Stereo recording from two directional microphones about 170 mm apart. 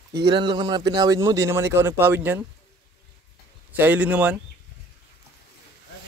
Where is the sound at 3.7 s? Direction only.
10° right (ahead or behind).